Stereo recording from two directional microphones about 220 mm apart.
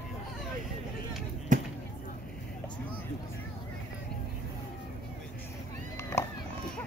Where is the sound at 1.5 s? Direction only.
35° right (ahead or behind).